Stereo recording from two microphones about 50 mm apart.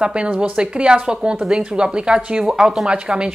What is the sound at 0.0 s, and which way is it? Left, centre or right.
A woman's voice, right.